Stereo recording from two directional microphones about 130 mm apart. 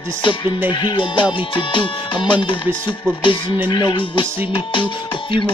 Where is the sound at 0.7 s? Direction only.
35° left (ahead or behind).